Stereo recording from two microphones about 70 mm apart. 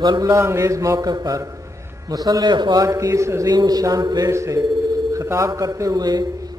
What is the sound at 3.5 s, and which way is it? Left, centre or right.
Speech, right.